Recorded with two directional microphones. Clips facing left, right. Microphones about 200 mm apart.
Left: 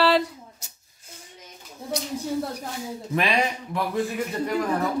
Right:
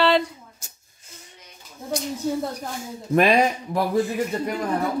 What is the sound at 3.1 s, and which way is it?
Speech, 45° right (ahead or behind).